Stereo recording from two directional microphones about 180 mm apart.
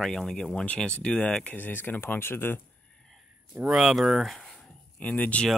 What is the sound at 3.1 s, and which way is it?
Speech, 5° right (ahead or behind).